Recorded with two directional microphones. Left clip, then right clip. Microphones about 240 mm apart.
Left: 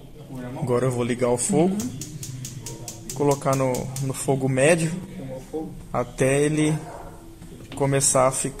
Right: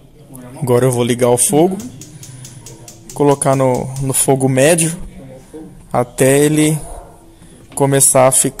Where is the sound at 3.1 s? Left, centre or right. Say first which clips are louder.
Right 9 dB; right.